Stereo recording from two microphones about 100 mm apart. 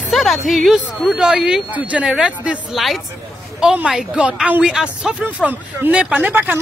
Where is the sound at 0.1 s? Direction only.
Centre (ahead or behind).